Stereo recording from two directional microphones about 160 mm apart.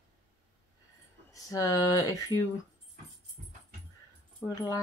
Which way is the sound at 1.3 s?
20° left (ahead or behind).